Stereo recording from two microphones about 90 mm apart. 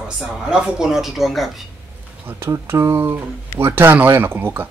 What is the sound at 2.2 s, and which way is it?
Speech, 30° right (ahead or behind).